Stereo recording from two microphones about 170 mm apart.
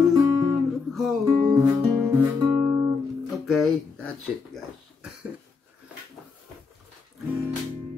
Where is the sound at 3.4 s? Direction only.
Centre (ahead or behind).